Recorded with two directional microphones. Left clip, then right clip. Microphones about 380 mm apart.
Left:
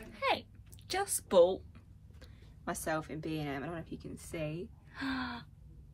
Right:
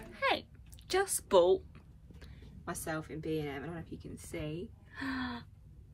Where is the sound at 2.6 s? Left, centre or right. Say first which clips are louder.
Left 3 dB; left.